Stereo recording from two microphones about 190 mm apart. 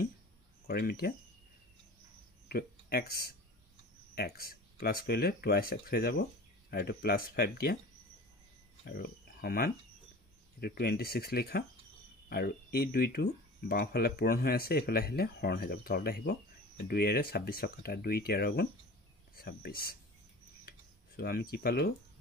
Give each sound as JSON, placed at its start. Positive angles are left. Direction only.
{"t": 0.7, "sound": "speech", "side_deg": 55}
{"t": 2.4, "sound": "speech", "side_deg": 55}
{"t": 8.8, "sound": "speech", "side_deg": 55}
{"t": 21.2, "sound": "speech", "side_deg": 55}